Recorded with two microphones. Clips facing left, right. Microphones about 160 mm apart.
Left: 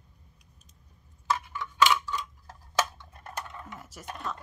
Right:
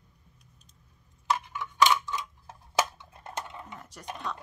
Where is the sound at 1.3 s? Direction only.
15° right (ahead or behind).